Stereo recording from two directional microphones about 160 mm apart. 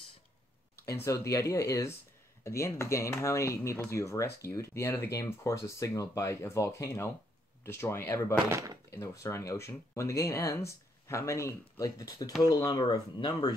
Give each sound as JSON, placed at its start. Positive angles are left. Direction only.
{"t": 0.8, "sound": "speech", "side_deg": 20}
{"t": 8.5, "sound": "speech", "side_deg": -20}
{"t": 8.9, "sound": "speech", "side_deg": 20}